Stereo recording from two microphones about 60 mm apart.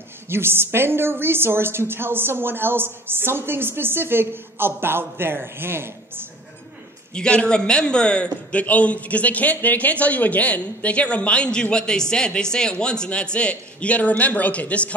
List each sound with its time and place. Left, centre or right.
0.3 s a woman's voice: right
7.2 s a man's voice: centre